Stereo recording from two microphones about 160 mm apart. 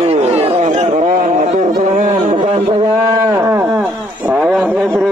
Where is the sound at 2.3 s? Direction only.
40° right (ahead or behind); by 3.8 s 10° right (ahead or behind).